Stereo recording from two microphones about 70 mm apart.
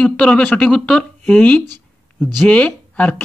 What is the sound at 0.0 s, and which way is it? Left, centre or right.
Speech, centre.